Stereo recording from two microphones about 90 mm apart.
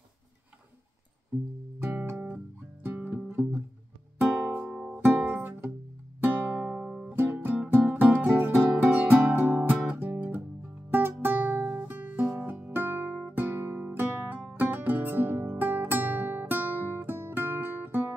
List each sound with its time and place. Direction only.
1.8 s music: 20° right (ahead or behind)
4.2 s music: 10° right (ahead or behind)
6.8 s music: centre (ahead or behind)
7.1 s music: 20° right (ahead or behind)